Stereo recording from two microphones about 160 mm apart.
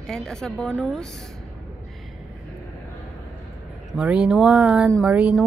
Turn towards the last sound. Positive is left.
turn(degrees=-5)  # may be behind; listen again after turning